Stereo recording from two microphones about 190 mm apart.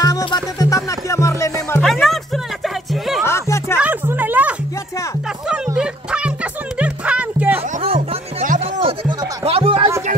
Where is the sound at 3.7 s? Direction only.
10° right (ahead or behind).